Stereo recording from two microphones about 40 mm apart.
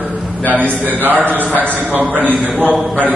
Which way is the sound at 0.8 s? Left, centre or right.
Right.